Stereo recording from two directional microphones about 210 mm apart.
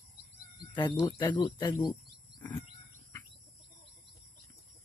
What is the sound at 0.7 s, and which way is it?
Speech, 20° left (ahead or behind).